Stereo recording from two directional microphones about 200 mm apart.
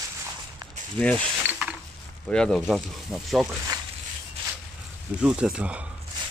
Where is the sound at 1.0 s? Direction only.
5° left (ahead or behind).